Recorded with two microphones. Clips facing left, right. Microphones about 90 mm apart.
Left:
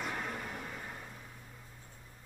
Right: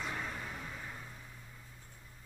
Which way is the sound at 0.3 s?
50° left (ahead or behind).